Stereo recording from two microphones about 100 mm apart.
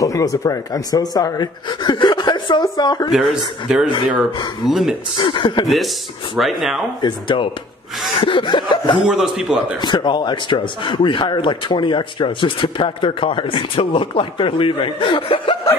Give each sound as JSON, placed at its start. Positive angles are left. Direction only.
{"t": 0.0, "sound": "speech", "side_deg": 35}
{"t": 3.1, "sound": "speech", "side_deg": 0}
{"t": 5.1, "sound": "a man's voice", "side_deg": 55}
{"t": 6.3, "sound": "speech", "side_deg": -5}
{"t": 7.0, "sound": "speech", "side_deg": 50}
{"t": 9.0, "sound": "a man's voice", "side_deg": -5}
{"t": 9.8, "sound": "a man's voice", "side_deg": 50}